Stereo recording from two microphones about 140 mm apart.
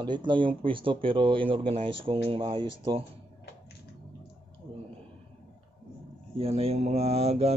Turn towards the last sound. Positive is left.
turn(degrees=-50)  # may be behind; listen again after turning